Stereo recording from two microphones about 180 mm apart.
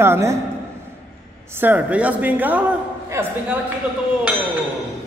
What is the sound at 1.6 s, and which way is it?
Speech, 10° right (ahead or behind).